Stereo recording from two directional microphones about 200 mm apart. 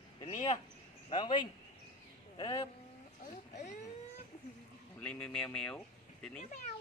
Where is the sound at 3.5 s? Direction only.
35° left (ahead or behind).